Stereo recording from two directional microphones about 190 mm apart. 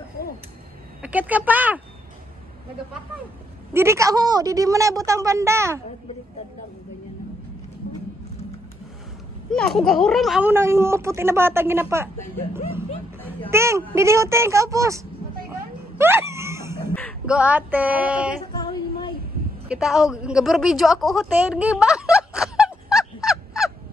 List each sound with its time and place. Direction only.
1.0 s speech: 10° right (ahead or behind)
3.7 s speech: 15° right (ahead or behind)
9.5 s speech: centre (ahead or behind)
12.5 s music: 10° right (ahead or behind)
13.5 s speech: 15° right (ahead or behind)
16.0 s a sound: 10° right (ahead or behind)
17.3 s speech: 5° right (ahead or behind)
18.6 s a sound: 25° left (ahead or behind)
19.7 s a woman's voice: 5° right (ahead or behind)